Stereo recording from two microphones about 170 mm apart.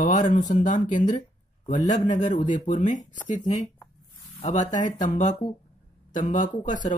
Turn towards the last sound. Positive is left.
turn(degrees=45)  # may be behind; listen again after turning